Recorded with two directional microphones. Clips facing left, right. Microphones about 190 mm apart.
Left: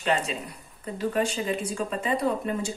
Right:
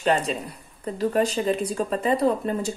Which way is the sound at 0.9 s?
40° right (ahead or behind).